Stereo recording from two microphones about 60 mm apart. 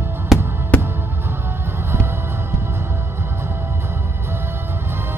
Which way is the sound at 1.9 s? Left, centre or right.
Right.